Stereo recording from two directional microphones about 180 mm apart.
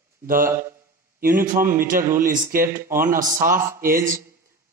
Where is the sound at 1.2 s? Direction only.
50° right (ahead or behind).